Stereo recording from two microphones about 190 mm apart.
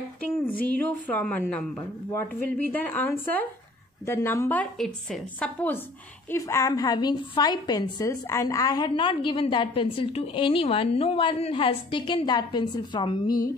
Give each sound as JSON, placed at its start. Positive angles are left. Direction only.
{"t": 0.2, "sound": "a woman's voice", "side_deg": 10}